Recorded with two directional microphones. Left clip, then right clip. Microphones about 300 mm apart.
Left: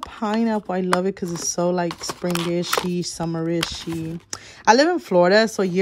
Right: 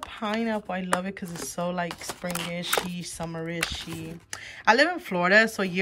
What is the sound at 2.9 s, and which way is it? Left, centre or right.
Speech, centre.